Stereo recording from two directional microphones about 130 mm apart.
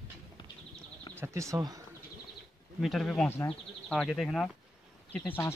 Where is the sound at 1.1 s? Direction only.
20° right (ahead or behind).